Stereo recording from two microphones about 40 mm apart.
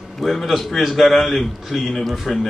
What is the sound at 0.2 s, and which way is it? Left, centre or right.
A man's voice, centre.